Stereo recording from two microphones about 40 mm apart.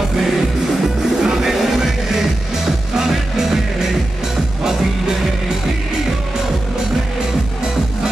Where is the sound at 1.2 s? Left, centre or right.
Centre.